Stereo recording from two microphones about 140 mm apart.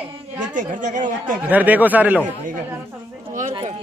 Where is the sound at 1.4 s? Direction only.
10° right (ahead or behind).